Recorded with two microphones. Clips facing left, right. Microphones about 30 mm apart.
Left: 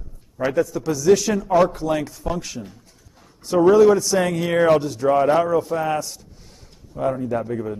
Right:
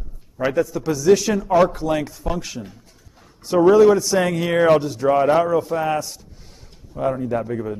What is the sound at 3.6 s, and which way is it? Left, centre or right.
Speech, centre.